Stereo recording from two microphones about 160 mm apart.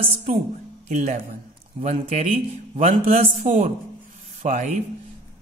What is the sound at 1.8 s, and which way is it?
A man's voice, 45° right (ahead or behind).